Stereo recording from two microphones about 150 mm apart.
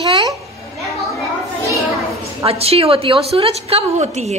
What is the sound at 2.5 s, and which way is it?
A woman's voice, 40° right (ahead or behind).